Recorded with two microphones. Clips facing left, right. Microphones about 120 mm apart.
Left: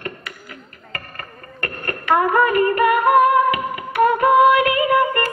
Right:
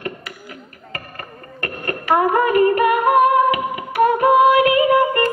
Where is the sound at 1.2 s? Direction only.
20° right (ahead or behind).